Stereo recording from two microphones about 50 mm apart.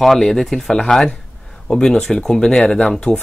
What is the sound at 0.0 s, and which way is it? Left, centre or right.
Speech, centre.